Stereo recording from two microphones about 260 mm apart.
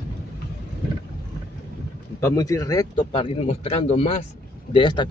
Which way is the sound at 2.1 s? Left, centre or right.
Centre.